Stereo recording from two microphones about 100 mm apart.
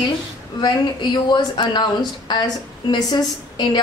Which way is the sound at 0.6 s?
45° left (ahead or behind).